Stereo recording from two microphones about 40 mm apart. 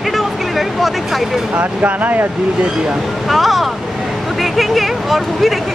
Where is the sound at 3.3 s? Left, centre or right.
Centre.